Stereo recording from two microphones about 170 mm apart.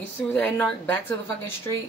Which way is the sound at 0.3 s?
10° left (ahead or behind).